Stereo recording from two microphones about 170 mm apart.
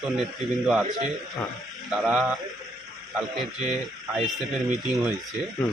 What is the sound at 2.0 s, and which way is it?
Speech, centre (ahead or behind).